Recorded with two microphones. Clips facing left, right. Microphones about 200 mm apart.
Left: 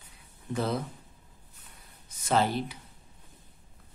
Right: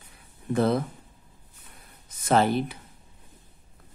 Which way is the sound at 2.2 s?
55° right (ahead or behind).